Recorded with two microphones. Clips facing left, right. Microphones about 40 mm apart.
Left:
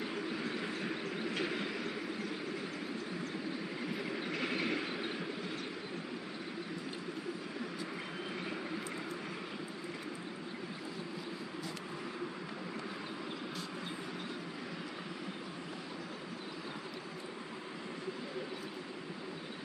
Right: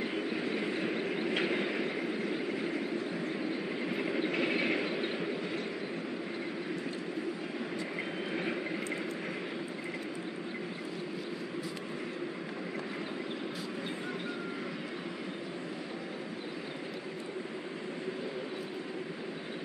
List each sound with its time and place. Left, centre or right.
0.7 s vehicle: right
3.9 s vehicle: right